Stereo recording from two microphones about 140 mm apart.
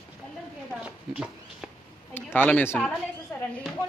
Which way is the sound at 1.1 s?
5° right (ahead or behind).